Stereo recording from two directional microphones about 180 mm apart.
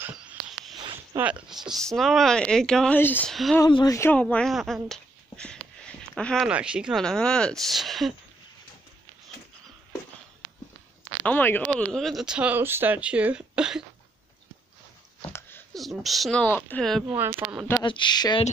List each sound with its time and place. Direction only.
0.0 s a sound: 5° right (ahead or behind)
1.1 s speech: 5° right (ahead or behind); by 3.3 s 10° left (ahead or behind)
3.5 s speech: 20° left (ahead or behind); by 8.1 s centre (ahead or behind)
11.2 s speech: 10° left (ahead or behind)
15.2 s a sound: 10° left (ahead or behind)
15.7 s speech: centre (ahead or behind)
17.4 s speech: 25° right (ahead or behind)
17.8 s speech: 25° left (ahead or behind)